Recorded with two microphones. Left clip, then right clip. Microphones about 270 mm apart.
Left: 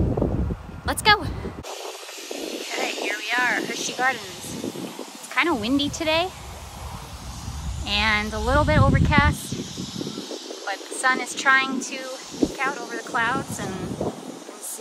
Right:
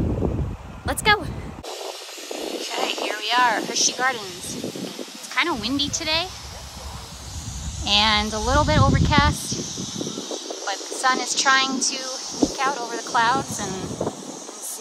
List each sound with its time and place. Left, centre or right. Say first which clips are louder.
0.8 s speech: left 1 dB; centre
2.2 s vehicle: right 2 dB; centre
2.7 s a sound: right 1 dB; centre
5.3 s speech: left 1 dB; centre
7.8 s speech: right 3 dB; centre
9.6 s a sound: right 3 dB; right
10.6 s speech: right 1 dB; centre
12.1 s a sound: right 2 dB; right
12.5 s speech: right 3 dB; centre